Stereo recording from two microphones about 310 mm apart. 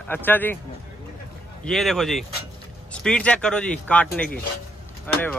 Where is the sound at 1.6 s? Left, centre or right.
Centre.